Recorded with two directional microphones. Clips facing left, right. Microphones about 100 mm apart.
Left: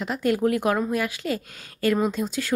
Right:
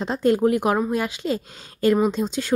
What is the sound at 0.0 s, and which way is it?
A woman's voice, 30° right (ahead or behind).